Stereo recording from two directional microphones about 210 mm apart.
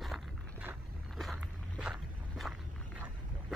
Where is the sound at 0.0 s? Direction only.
5° right (ahead or behind).